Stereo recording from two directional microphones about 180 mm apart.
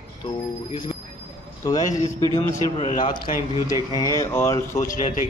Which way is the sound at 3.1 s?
25° left (ahead or behind).